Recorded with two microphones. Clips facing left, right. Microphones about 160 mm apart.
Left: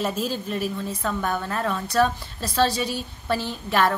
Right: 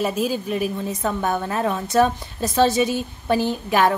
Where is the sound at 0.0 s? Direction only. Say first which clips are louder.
Right 4 dB; 10° right (ahead or behind).